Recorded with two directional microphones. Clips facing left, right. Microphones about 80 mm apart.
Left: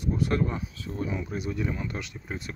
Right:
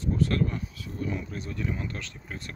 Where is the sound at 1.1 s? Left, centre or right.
Centre.